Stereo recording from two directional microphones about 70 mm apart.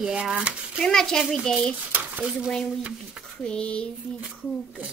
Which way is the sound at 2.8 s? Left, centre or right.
Centre.